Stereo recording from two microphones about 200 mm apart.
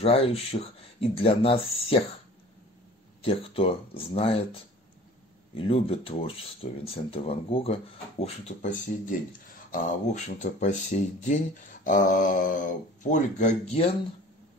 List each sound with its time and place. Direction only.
0.0 s speech: 30° left (ahead or behind)
3.2 s speech: 30° left (ahead or behind)